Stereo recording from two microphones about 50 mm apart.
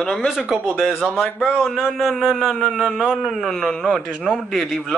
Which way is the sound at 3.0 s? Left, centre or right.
Centre.